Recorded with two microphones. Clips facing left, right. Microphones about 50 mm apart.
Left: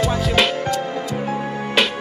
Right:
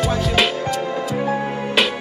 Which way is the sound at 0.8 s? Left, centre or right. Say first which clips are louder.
Right 2 dB; right.